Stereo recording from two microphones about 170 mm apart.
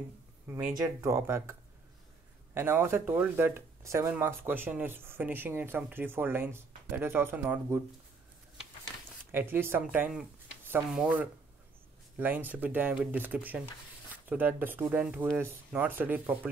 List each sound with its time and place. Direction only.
0.5 s speech: 10° right (ahead or behind)
9.3 s speech: 10° right (ahead or behind)